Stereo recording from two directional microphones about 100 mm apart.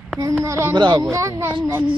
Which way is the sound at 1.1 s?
25° right (ahead or behind).